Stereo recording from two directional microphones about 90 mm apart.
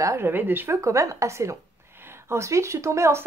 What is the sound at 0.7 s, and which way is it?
Speech, 35° right (ahead or behind).